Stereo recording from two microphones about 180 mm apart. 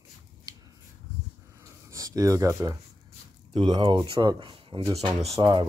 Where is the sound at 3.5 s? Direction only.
30° right (ahead or behind).